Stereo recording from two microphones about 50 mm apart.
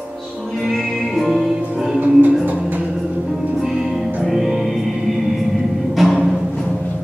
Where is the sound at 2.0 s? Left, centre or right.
Right.